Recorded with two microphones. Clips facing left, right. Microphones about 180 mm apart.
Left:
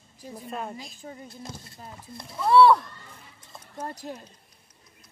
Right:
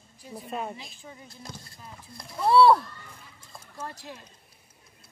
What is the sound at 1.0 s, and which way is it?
Speech, 40° left (ahead or behind).